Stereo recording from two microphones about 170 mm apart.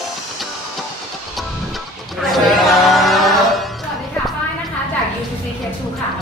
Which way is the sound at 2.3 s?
Centre (ahead or behind).